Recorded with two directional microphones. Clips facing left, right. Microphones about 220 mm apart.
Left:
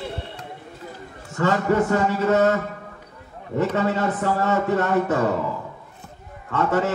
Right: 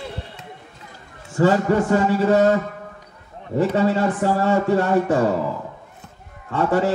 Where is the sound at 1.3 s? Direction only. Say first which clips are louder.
Right 3 dB; 35° right (ahead or behind).